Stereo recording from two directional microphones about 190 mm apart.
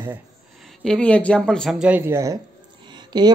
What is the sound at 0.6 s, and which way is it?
Speech, 5° left (ahead or behind).